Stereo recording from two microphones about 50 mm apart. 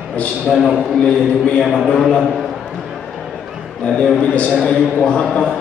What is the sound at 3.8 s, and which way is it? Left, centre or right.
A man's voice, left.